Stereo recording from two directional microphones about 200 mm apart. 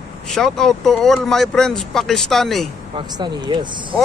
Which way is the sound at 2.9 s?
20° right (ahead or behind).